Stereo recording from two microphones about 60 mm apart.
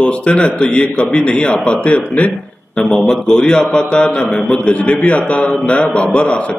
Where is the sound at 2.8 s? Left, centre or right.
Centre.